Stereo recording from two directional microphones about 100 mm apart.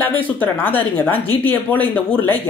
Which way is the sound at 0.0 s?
20° left (ahead or behind).